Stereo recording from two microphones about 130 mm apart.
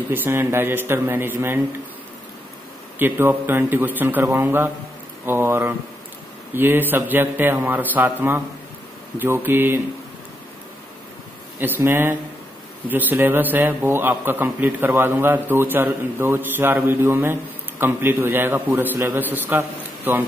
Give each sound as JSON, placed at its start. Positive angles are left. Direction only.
{"t": 0.1, "sound": "a man's voice", "side_deg": -15}
{"t": 3.0, "sound": "a man's voice", "side_deg": -15}
{"t": 11.6, "sound": "a man's voice", "side_deg": -15}